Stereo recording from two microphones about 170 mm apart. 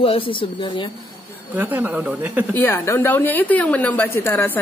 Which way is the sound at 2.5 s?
15° left (ahead or behind).